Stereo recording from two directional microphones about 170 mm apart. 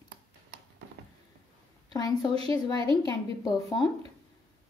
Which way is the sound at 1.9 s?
20° left (ahead or behind).